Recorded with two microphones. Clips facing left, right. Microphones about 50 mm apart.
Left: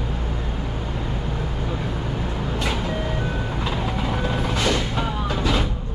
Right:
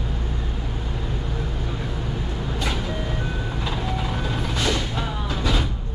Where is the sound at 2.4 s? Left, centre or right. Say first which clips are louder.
Left 2 dB; centre.